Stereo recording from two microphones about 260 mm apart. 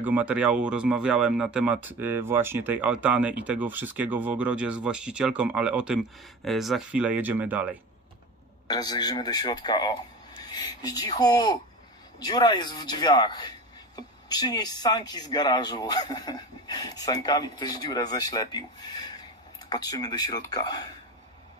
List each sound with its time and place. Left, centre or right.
0.0 s speech: centre
8.6 s speech: centre